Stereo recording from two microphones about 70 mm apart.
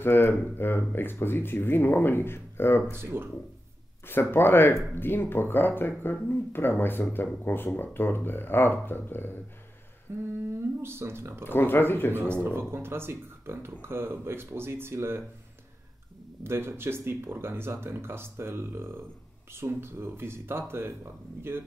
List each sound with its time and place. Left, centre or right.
0.0 s speech: left
2.9 s speech: right
4.0 s speech: left
10.1 s humming: right
10.8 s speech: right
11.4 s speech: left
12.4 s speech: right
16.4 s speech: right